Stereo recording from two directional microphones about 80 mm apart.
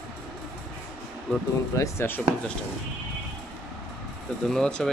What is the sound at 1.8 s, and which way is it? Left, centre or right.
Speech, left.